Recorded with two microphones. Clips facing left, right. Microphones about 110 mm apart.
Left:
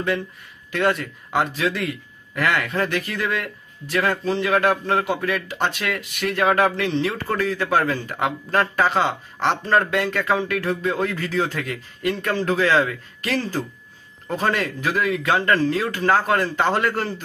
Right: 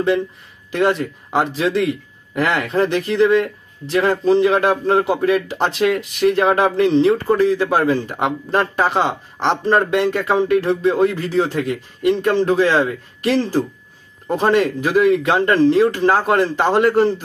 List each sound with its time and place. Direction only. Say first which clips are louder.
0.7 s speech: right 4 dB; 25° right (ahead or behind)
7.2 s a man's voice: right 7 dB; 15° right (ahead or behind)
11.0 s a man's voice: right 6 dB; 15° right (ahead or behind)
16.1 s a man's voice: right 4 dB; 15° right (ahead or behind)